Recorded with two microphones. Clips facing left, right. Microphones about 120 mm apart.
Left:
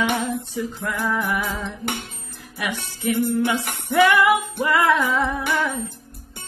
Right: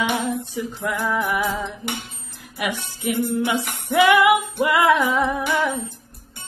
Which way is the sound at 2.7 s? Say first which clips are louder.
Left 3 dB; 15° right (ahead or behind).